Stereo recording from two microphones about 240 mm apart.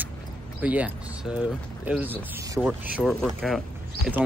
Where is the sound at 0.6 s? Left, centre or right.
Centre.